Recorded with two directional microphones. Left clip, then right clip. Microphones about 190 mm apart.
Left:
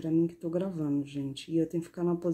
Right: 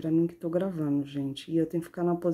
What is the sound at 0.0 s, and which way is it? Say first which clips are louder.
Speech: right 2 dB; 15° right (ahead or behind).